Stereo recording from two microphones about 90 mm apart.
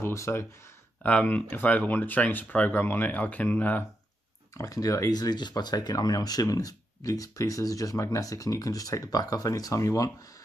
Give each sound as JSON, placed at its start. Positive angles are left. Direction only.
{"t": 0.0, "sound": "speech", "side_deg": 30}
{"t": 1.0, "sound": "speech", "side_deg": 15}
{"t": 4.6, "sound": "speech", "side_deg": 40}